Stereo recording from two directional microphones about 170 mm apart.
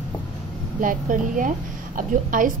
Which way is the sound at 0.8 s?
50° right (ahead or behind).